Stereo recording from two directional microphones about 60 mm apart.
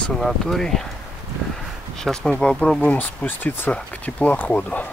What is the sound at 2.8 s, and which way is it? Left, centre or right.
Speech, left.